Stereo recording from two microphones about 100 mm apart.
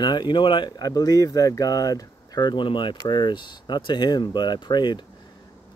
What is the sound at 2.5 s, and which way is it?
Speech, 55° left (ahead or behind).